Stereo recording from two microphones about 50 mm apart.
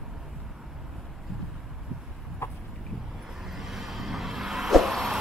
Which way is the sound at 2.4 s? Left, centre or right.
Left.